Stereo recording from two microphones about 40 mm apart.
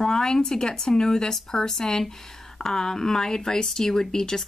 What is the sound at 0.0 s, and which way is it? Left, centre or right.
Speech, centre.